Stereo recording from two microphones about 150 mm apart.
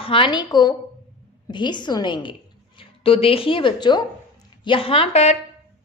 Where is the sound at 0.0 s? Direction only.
35° left (ahead or behind).